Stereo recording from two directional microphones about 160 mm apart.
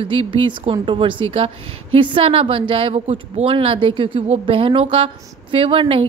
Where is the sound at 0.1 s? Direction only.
35° right (ahead or behind).